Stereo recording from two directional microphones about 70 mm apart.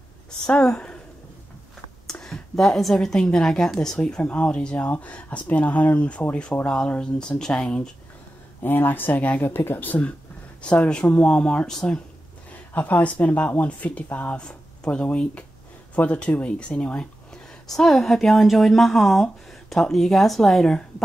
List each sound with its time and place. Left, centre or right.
0.5 s speech: centre
2.0 s a woman's voice: centre
8.6 s speech: left; by 12.0 s centre
12.7 s speech: left; by 20.8 s centre